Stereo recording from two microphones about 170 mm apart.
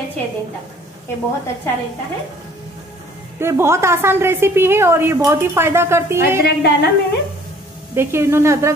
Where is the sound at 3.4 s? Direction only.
15° right (ahead or behind).